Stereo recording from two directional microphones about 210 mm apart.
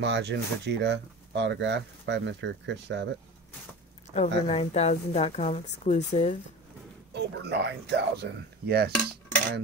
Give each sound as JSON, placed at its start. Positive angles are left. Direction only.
{"t": 0.0, "sound": "speech", "side_deg": -55}
{"t": 4.1, "sound": "speech", "side_deg": 30}
{"t": 7.2, "sound": "speech", "side_deg": -55}